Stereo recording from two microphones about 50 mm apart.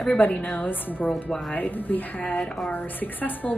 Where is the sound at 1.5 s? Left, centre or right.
Left.